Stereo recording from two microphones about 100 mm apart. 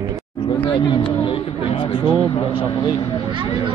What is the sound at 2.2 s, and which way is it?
Vehicle, 50° left (ahead or behind).